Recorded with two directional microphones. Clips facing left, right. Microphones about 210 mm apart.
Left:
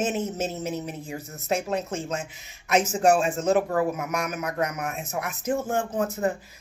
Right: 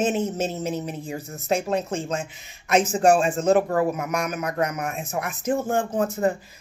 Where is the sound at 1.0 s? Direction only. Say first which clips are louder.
Right 3 dB; 5° left (ahead or behind).